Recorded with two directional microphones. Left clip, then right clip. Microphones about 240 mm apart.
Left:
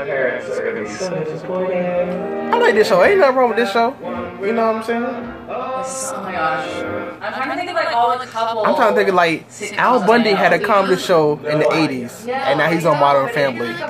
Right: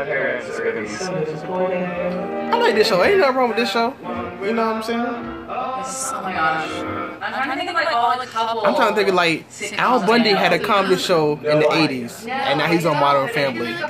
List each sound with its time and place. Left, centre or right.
2.5 s speech: centre
7.3 s a man's voice: centre